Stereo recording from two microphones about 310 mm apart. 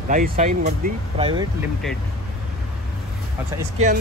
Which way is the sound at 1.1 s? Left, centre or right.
Centre.